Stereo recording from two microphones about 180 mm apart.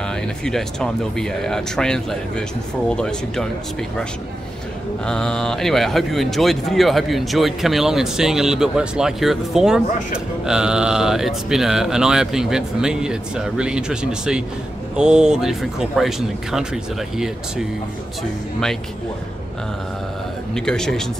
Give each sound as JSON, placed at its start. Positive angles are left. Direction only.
{"t": 0.1, "sound": "speech", "side_deg": 5}
{"t": 5.0, "sound": "speech", "side_deg": 5}
{"t": 20.5, "sound": "speech", "side_deg": 5}